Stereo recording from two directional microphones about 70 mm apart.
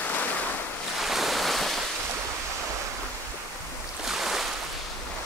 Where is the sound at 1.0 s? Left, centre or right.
Centre.